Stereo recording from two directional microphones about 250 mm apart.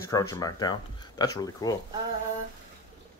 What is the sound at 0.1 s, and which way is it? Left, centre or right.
Speech, centre.